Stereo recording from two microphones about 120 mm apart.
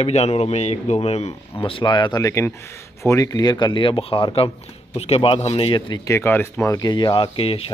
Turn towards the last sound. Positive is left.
turn(degrees=45)  # may be behind; listen again after turning